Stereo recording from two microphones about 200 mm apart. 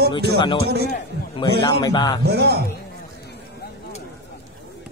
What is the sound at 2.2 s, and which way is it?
Speech, 55° right (ahead or behind).